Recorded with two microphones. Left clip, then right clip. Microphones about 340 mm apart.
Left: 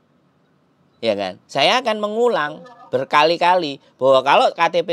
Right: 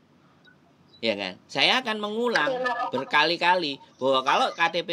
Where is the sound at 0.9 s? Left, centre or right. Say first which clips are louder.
Left 7 dB; left.